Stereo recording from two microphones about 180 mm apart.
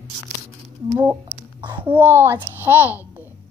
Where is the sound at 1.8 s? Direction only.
10° right (ahead or behind).